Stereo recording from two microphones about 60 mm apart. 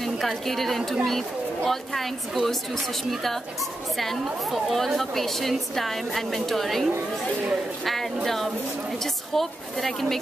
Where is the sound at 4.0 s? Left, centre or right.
Centre.